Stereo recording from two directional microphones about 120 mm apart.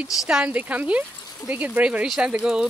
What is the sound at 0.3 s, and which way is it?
Speech, 10° right (ahead or behind).